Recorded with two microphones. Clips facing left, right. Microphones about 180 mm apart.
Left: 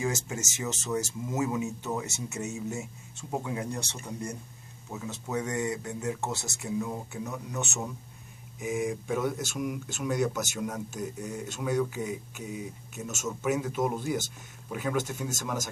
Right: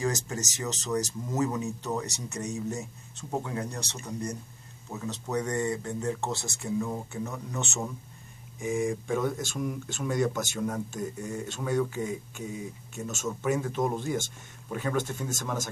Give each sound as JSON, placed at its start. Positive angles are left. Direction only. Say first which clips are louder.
{"t": 0.0, "sound": "speech", "louder": "right 1 dB", "side_deg": 10}